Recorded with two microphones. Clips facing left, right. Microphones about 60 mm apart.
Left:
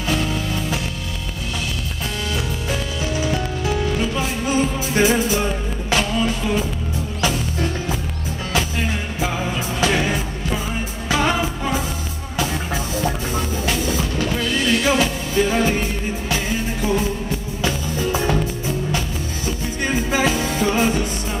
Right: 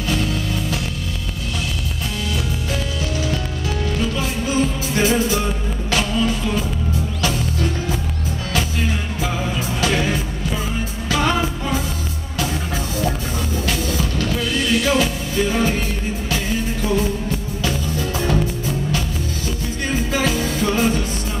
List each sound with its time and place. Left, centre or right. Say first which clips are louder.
0.1 s music: left 1 dB; centre
2.7 s music: left 2 dB; centre
9.9 s music: even; centre
12.4 s music: left 1 dB; centre
17.6 s music: left 2 dB; centre